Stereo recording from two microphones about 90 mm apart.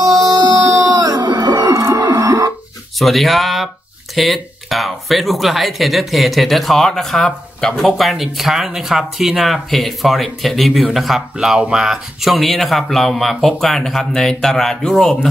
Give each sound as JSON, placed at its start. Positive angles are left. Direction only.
{"t": 0.0, "sound": "music", "side_deg": -45}
{"t": 1.7, "sound": "a sound", "side_deg": -30}
{"t": 3.0, "sound": "speech", "side_deg": 0}